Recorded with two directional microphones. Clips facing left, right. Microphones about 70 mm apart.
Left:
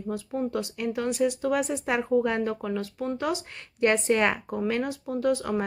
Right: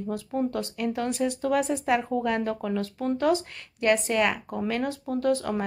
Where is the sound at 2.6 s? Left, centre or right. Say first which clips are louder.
Right 2 dB; centre.